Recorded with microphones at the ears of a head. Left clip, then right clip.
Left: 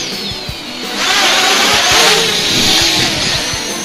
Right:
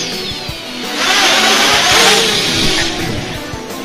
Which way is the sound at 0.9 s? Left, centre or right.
Centre.